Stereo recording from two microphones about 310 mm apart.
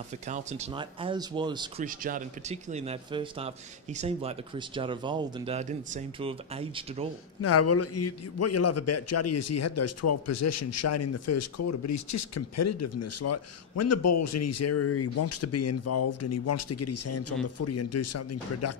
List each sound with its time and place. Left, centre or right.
0.3 s a man's voice: right
7.4 s a man's voice: left